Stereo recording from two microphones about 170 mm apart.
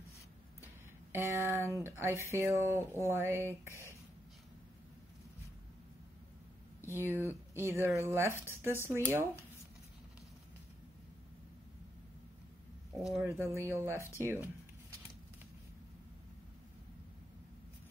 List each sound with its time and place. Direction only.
1.1 s speech: 15° right (ahead or behind)
7.0 s speech: 15° right (ahead or behind)
12.9 s speech: centre (ahead or behind)
13.2 s speech: 15° right (ahead or behind)